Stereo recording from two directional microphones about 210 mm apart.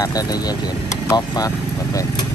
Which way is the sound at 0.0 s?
15° left (ahead or behind).